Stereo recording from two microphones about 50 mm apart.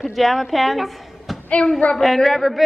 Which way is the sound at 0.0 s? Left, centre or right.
Centre.